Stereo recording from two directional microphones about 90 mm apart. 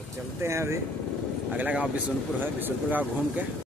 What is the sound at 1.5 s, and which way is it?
Speech, 15° right (ahead or behind).